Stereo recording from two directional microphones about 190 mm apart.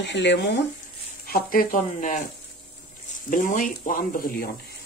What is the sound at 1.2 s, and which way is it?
Speech, 50° left (ahead or behind).